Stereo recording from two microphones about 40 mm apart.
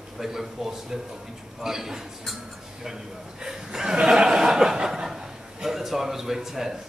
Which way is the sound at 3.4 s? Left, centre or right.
Centre.